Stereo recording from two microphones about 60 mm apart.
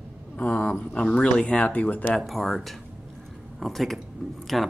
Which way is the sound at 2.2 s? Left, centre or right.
Centre.